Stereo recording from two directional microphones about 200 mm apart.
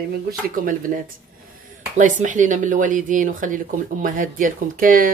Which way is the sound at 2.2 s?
40° right (ahead or behind).